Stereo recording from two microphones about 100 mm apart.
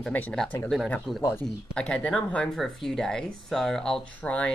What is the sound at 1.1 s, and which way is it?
Speech, 40° left (ahead or behind).